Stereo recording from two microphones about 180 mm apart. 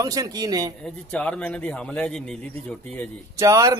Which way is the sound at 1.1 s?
5° left (ahead or behind).